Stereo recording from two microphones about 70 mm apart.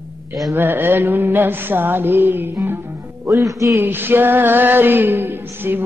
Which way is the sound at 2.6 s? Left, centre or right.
Right.